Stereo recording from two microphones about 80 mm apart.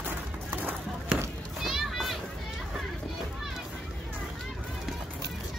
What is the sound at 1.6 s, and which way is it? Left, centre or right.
Children playing, centre.